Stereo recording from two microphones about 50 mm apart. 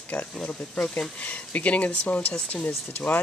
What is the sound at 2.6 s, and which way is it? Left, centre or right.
Speech, left.